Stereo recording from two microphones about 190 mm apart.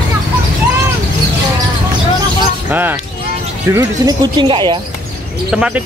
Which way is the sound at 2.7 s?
10° right (ahead or behind).